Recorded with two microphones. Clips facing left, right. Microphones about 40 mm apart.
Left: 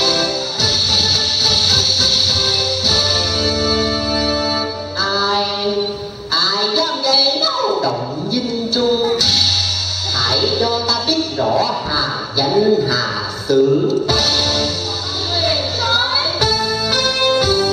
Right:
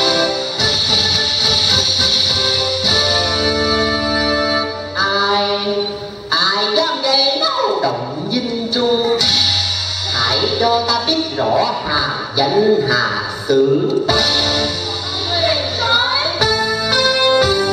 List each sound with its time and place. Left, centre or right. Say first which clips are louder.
0.0 s music: right 2 dB; centre
2.9 s music: right 3 dB; centre
16.9 s music: right 3 dB; centre